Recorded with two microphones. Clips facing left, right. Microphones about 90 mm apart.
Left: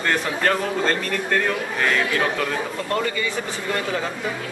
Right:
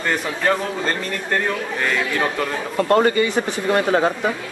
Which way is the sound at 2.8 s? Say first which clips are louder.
Right 11 dB; 50° right (ahead or behind).